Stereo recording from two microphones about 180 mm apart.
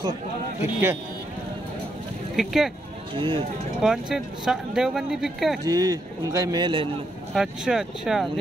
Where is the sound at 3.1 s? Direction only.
25° right (ahead or behind).